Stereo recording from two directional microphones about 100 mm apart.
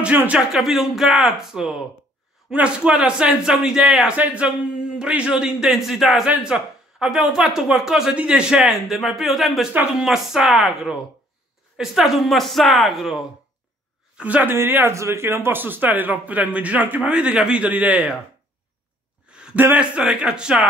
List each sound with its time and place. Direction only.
0.0 s speech: 15° right (ahead or behind)
0.5 s speech: 5° right (ahead or behind)
14.1 s speech: 15° right (ahead or behind)
19.2 s a sound: 10° right (ahead or behind)
19.6 s speech: 15° right (ahead or behind)